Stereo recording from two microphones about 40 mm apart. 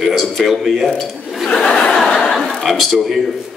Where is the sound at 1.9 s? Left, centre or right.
Centre.